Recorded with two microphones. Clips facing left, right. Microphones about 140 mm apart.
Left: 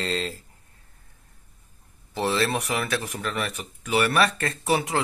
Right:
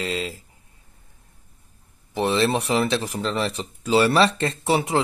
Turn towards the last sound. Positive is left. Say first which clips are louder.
# right 3 dB
turn(degrees=-25)  # may be behind; listen again after turning